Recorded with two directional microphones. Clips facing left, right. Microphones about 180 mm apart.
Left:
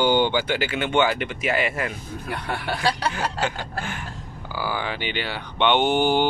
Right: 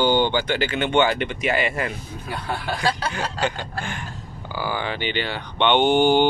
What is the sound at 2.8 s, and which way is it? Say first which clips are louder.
Speech: left 2 dB; 5° left (ahead or behind).